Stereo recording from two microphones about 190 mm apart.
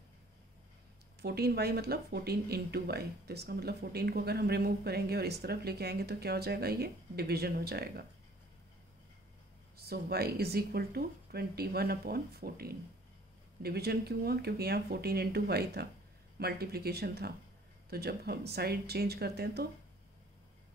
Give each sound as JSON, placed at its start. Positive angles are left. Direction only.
{"t": 1.2, "sound": "speech", "side_deg": -55}
{"t": 9.8, "sound": "speech", "side_deg": -55}